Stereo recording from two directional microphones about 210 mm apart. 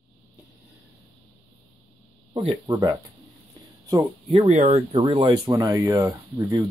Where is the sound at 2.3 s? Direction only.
25° right (ahead or behind).